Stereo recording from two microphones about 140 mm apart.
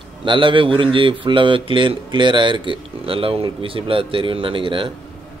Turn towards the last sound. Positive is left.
turn(degrees=-35)  # may be behind; listen again after turning